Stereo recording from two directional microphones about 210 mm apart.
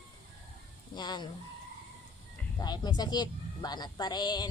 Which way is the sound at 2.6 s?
20° left (ahead or behind).